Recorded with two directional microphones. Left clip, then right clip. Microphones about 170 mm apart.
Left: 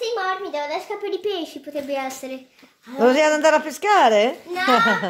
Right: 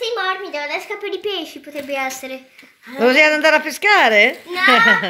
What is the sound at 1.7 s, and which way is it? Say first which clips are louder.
A woman's voice: right 3 dB; 10° left (ahead or behind).